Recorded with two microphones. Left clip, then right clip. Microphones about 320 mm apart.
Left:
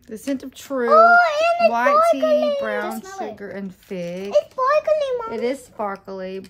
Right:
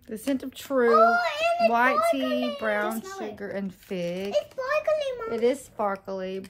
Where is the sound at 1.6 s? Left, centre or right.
Centre.